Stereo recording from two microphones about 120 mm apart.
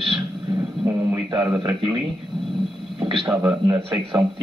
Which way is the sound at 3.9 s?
40° right (ahead or behind).